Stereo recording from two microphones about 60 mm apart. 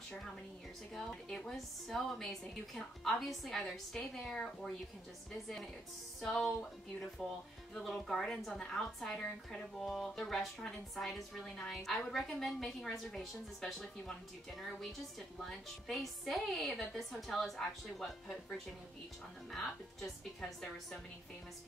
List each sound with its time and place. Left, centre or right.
0.9 s a woman's voice: centre
6.2 s a woman's voice: centre
7.7 s a woman's voice: centre
19.5 s a woman's voice: centre